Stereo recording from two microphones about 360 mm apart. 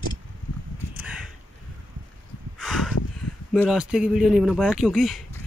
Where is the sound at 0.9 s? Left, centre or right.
Centre.